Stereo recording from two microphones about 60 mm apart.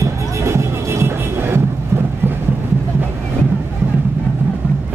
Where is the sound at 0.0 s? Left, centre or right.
Right.